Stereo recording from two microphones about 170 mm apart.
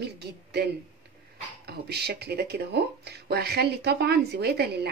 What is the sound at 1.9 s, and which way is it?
A woman's voice, 75° right (ahead or behind).